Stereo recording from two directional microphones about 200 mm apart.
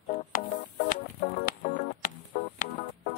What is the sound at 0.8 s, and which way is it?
Music, 45° left (ahead or behind).